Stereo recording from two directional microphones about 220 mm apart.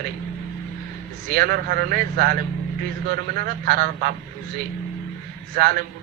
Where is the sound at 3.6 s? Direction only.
45° right (ahead or behind).